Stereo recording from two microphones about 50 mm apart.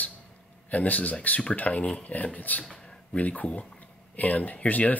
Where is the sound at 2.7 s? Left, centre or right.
Left.